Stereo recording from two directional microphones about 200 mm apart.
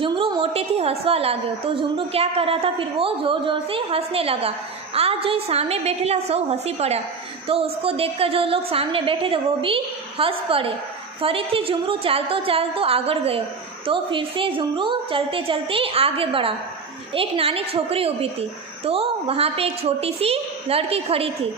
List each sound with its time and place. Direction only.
0.0 s a woman's voice: 25° right (ahead or behind)